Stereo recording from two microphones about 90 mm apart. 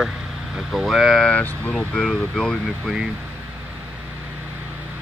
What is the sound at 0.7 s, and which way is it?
Speech, centre (ahead or behind).